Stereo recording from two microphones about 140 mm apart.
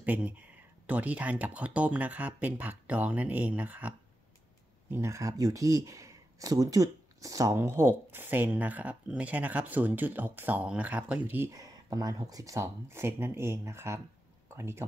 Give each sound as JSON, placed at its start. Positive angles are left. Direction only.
{"t": 0.0, "sound": "speech", "side_deg": -10}
{"t": 4.9, "sound": "speech", "side_deg": -20}